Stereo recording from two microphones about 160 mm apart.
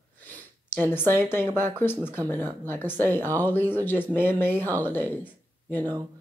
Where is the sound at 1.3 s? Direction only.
15° left (ahead or behind).